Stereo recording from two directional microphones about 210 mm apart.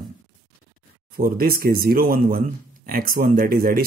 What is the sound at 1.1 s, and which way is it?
Speech, 45° right (ahead or behind).